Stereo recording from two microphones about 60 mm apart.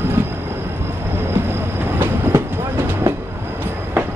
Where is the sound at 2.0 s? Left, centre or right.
Right.